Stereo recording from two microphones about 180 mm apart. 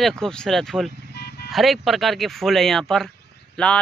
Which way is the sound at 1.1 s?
65° left (ahead or behind).